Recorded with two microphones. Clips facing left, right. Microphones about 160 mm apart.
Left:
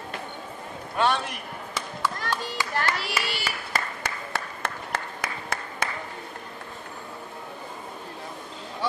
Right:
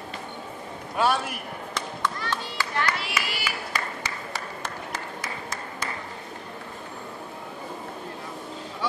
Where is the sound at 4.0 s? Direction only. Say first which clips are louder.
Left 2 dB; 60° left (ahead or behind).